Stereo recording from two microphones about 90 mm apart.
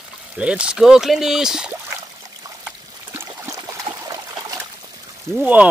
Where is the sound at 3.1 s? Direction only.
25° right (ahead or behind).